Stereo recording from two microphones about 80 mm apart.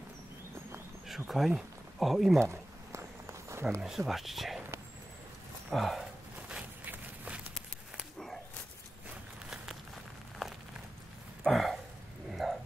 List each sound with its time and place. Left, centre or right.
1.0 s speech: centre
2.3 s a sound: right
3.8 s speech: centre
5.7 s speech: centre
6.9 s run: centre
11.4 s a sound: centre